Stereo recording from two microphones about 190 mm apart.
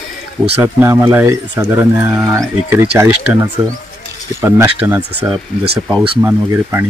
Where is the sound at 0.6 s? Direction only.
10° right (ahead or behind).